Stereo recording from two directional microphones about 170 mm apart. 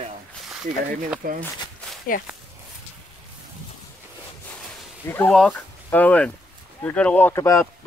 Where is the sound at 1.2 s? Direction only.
55° right (ahead or behind).